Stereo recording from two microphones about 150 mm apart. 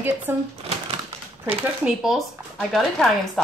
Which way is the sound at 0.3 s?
15° right (ahead or behind).